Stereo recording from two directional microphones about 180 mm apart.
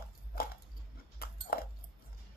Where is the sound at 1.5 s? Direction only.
55° left (ahead or behind).